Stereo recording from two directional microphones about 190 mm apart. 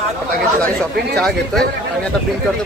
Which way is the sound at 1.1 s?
5° left (ahead or behind).